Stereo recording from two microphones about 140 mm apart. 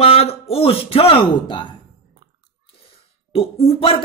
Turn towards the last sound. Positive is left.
turn(degrees=45)  # may be behind; listen again after turning